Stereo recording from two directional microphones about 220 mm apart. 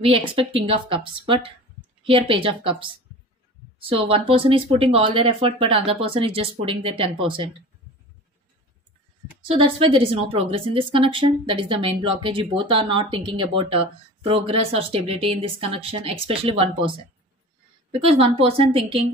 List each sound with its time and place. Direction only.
0.0 s speech: 25° right (ahead or behind)
9.4 s speech: 25° right (ahead or behind)
18.0 s speech: 25° right (ahead or behind)